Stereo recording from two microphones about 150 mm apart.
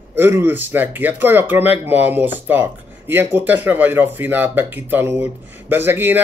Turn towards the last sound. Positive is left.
turn(degrees=-15)  # may be behind; listen again after turning